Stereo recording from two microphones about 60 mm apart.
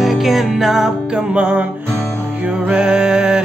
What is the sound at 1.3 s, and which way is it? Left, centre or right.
Music, centre.